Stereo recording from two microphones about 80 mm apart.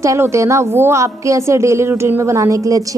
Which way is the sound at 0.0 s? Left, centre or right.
Right.